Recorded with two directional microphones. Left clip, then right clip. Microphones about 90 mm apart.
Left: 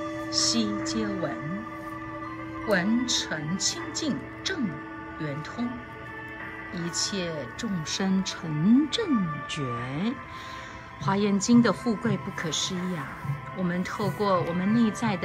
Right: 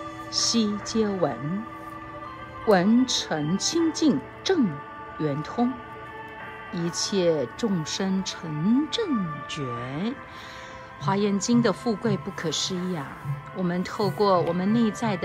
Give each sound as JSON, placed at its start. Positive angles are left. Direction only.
{"t": 0.3, "sound": "speech", "side_deg": -40}
{"t": 2.6, "sound": "speech", "side_deg": -40}
{"t": 6.7, "sound": "speech", "side_deg": -40}
{"t": 7.8, "sound": "speech", "side_deg": -15}
{"t": 11.8, "sound": "speech", "side_deg": -60}
{"t": 12.1, "sound": "speech", "side_deg": -45}
{"t": 14.7, "sound": "speech", "side_deg": -15}